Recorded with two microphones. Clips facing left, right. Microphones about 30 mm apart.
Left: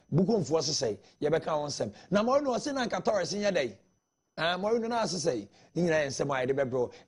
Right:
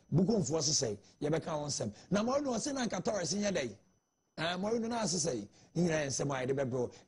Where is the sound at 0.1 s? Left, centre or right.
Left.